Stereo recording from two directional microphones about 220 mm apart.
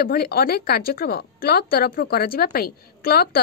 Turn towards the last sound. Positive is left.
turn(degrees=45)  # may be behind; listen again after turning